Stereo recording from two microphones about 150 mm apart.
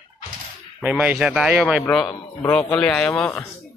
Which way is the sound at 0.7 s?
5° right (ahead or behind).